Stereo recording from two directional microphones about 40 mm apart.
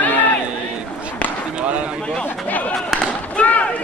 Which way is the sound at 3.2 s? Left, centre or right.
Left.